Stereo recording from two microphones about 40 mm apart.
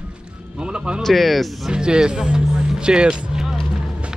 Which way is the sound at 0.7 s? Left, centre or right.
Right.